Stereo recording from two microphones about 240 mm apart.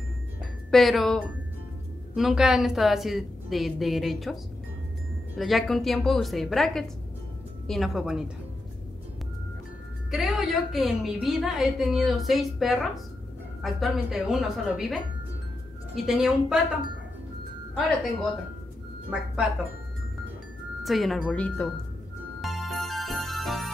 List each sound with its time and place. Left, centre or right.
0.7 s a woman's voice: centre
5.4 s a woman's voice: centre
10.1 s a woman's voice: centre
16.1 s a woman's voice: centre
19.0 s a woman's voice: centre
20.8 s a woman's voice: centre
22.4 s music: centre